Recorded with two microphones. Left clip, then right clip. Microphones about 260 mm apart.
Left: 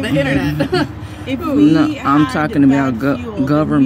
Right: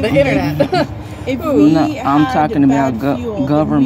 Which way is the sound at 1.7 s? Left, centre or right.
Left.